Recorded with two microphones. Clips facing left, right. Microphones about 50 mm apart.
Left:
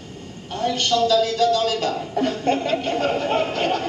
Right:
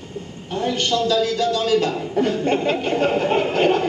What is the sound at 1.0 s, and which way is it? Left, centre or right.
Speech, right.